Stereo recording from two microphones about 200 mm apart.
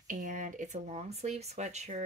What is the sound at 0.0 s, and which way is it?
Speech, 40° right (ahead or behind).